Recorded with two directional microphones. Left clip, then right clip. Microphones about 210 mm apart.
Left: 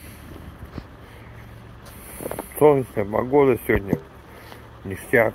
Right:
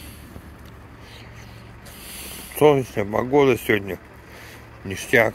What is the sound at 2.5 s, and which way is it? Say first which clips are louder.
Speech: even; 20° right (ahead or behind).